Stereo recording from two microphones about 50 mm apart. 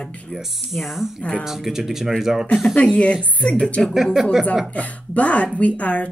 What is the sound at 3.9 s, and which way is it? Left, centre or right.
Speech, centre.